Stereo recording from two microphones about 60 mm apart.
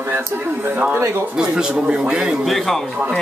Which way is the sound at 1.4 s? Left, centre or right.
Centre.